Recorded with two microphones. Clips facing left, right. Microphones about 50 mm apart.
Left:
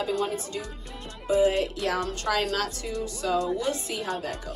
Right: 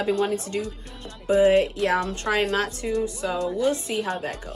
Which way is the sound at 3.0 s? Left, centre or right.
Centre.